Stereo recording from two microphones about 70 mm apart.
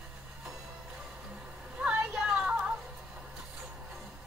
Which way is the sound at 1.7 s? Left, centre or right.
Centre.